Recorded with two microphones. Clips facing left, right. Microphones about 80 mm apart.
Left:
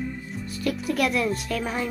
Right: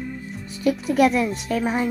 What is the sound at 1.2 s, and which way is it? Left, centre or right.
Speech, right.